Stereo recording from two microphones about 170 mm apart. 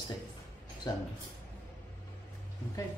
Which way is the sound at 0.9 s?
20° left (ahead or behind).